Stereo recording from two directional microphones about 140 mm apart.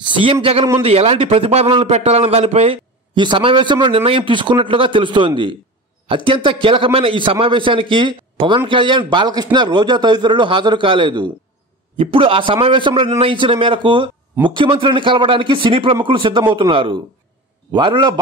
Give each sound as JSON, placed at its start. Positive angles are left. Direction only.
{"t": 0.0, "sound": "a man's voice", "side_deg": -40}